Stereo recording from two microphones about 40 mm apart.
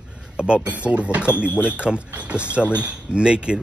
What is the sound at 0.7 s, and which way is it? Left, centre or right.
Speech, right.